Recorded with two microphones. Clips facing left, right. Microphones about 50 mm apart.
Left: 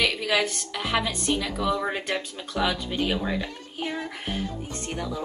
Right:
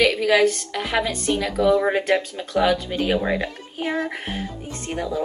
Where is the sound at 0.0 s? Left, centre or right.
Centre.